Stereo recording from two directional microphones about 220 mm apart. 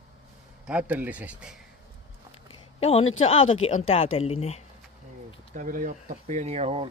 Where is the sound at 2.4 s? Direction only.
30° left (ahead or behind).